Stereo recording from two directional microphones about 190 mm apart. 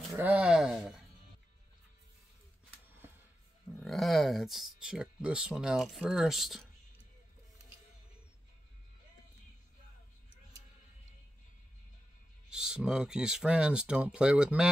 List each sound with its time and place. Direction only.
0.1 s speech: 5° right (ahead or behind)
3.8 s speech: centre (ahead or behind)
12.4 s speech: 5° right (ahead or behind)